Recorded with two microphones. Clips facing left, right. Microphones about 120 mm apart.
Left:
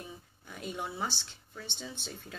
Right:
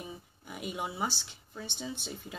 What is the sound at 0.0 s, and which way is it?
Speech, 10° right (ahead or behind).